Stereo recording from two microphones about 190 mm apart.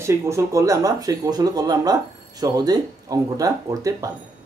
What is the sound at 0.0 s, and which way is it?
Speech, 15° right (ahead or behind).